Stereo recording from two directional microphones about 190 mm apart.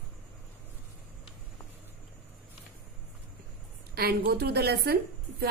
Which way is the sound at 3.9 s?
55° right (ahead or behind).